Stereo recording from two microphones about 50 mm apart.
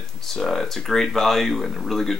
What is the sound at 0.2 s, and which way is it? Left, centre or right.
Speech, centre.